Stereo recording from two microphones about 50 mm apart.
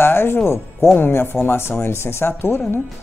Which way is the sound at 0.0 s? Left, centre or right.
Left.